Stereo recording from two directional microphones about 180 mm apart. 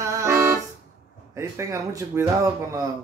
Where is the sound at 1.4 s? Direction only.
15° right (ahead or behind).